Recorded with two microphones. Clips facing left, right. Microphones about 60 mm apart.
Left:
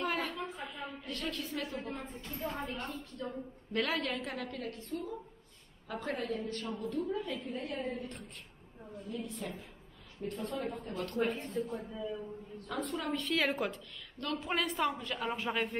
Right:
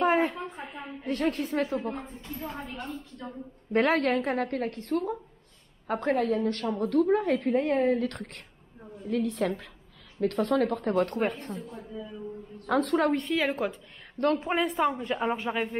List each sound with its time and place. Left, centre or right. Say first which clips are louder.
0.0 s a sound: right 10 dB; right
2.3 s a woman's voice: right 1 dB; centre
3.7 s a woman's voice: right 10 dB; right
11.0 s a woman's voice: right 4 dB; right
11.7 s speech: left 1 dB; centre
12.6 s a woman's voice: right 13 dB; right
13.5 s a woman's voice: right 5 dB; centre
14.1 s a woman's voice: right 12 dB; right
14.4 s a woman's voice: right 7 dB; right
15.0 s a woman's voice: right 8 dB; right
15.3 s a woman's voice: right 4 dB; centre